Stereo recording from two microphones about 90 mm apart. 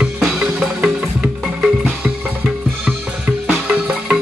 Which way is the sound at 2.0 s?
10° right (ahead or behind).